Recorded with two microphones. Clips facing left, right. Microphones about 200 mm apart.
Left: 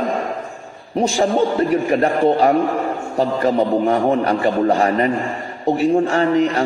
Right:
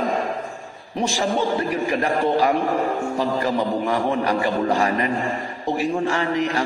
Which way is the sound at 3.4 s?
30° left (ahead or behind).